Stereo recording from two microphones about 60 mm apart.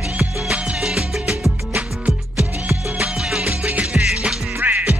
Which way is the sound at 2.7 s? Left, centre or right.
Right.